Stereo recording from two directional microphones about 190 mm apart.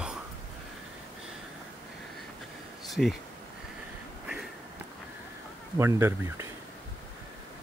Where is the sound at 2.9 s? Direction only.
Centre (ahead or behind).